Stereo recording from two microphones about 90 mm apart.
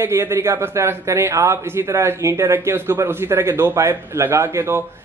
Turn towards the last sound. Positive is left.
turn(degrees=-30)  # may be behind; listen again after turning